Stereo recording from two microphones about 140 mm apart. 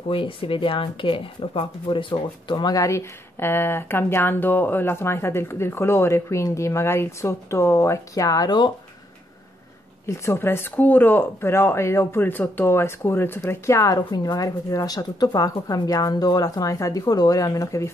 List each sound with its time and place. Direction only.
0.1 s speech: 40° left (ahead or behind)
10.0 s speech: 20° left (ahead or behind)